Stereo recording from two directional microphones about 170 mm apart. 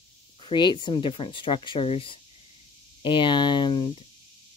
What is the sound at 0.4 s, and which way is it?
Speech, 30° left (ahead or behind).